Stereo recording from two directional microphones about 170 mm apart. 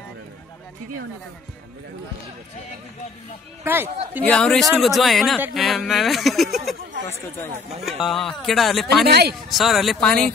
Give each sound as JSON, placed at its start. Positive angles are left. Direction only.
{"t": 3.6, "sound": "a man's voice", "side_deg": -10}
{"t": 4.2, "sound": "speech", "side_deg": 5}
{"t": 7.1, "sound": "speech", "side_deg": 15}
{"t": 7.8, "sound": "speech", "side_deg": 0}
{"t": 9.0, "sound": "speech", "side_deg": -70}
{"t": 9.5, "sound": "speech", "side_deg": 0}